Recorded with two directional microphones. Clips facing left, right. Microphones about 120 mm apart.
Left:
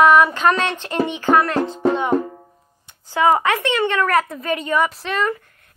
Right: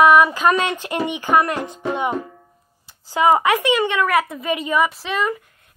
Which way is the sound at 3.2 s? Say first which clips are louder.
Right 1 dB; 15° right (ahead or behind).